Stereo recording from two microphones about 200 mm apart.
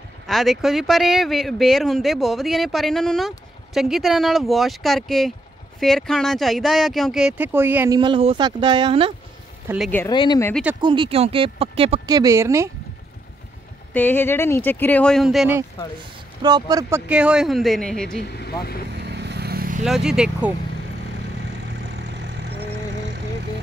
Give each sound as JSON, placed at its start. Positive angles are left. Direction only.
{"t": 0.3, "sound": "speech", "side_deg": 0}
{"t": 8.0, "sound": "speech", "side_deg": -25}
{"t": 9.8, "sound": "speech", "side_deg": 10}
{"t": 10.1, "sound": "speech", "side_deg": 25}
{"t": 10.8, "sound": "speech", "side_deg": -25}
{"t": 13.9, "sound": "speech", "side_deg": 10}
{"t": 16.4, "sound": "speech", "side_deg": -20}
{"t": 17.1, "sound": "speech", "side_deg": -5}
{"t": 18.2, "sound": "speech", "side_deg": 50}
{"t": 18.9, "sound": "vehicle", "side_deg": -55}
{"t": 19.8, "sound": "speech", "side_deg": 0}
{"t": 21.9, "sound": "vehicle", "side_deg": -55}